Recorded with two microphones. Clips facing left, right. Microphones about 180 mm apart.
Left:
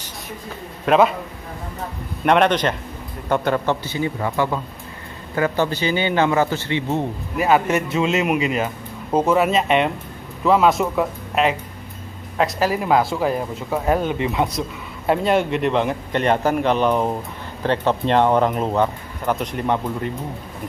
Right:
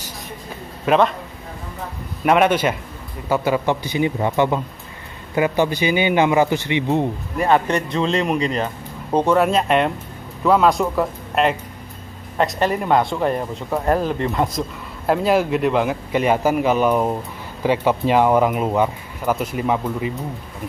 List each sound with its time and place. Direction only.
0.8 s speech: 5° left (ahead or behind)
2.2 s speech: 5° right (ahead or behind)
7.3 s speech: 5° left (ahead or behind)